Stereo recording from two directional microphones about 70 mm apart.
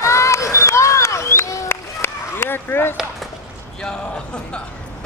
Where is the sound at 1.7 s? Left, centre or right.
Left.